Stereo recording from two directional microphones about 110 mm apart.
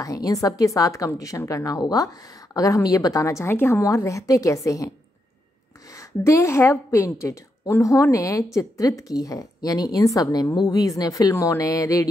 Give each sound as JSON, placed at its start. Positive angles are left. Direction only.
{"t": 0.0, "sound": "a woman's voice", "side_deg": 35}
{"t": 5.9, "sound": "a woman's voice", "side_deg": 25}